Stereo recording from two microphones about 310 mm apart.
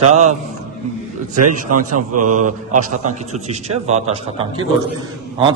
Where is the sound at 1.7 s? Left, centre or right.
Right.